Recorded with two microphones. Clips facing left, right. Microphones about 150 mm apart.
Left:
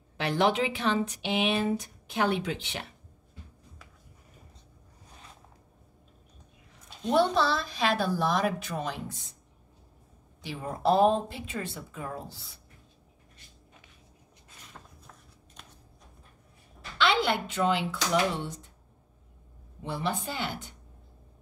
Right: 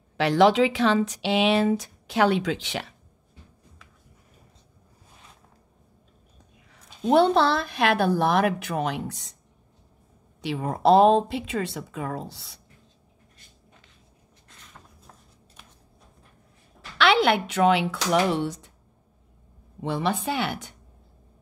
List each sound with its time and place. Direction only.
0.2 s speech: 90° right
7.1 s a woman's voice: 60° right (ahead or behind); by 9.4 s 80° right
10.4 s a woman's voice: 85° right
17.0 s speech: 70° right (ahead or behind)
19.8 s a woman's voice: 90° right; by 20.7 s 75° right (ahead or behind)